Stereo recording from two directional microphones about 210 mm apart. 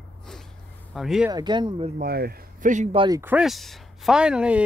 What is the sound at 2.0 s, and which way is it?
Speech, 45° right (ahead or behind).